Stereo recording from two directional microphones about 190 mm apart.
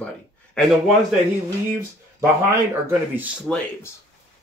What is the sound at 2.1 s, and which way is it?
Speech, 15° right (ahead or behind).